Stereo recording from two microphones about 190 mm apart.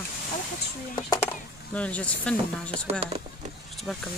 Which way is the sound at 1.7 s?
5° left (ahead or behind).